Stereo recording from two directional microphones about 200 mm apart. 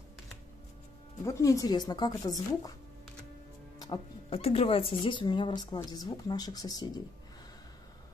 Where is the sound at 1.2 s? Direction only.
15° left (ahead or behind).